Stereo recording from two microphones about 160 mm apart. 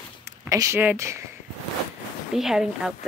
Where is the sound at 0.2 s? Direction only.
20° right (ahead or behind).